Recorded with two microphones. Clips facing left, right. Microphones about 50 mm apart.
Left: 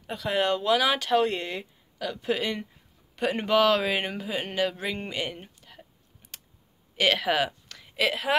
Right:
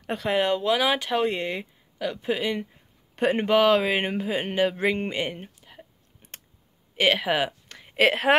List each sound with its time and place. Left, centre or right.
0.0 s speech: right
0.3 s speech: centre
3.2 s speech: right
5.4 s a sound: centre
7.0 s a sound: right
8.0 s a woman's voice: right